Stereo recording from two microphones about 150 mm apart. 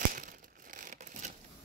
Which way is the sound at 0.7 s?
55° right (ahead or behind).